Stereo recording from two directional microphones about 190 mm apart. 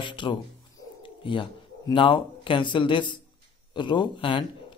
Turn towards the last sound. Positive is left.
turn(degrees=25)  # may be behind; listen again after turning